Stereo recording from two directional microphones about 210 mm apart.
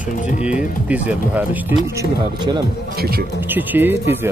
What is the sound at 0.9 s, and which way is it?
Speech, 5° right (ahead or behind).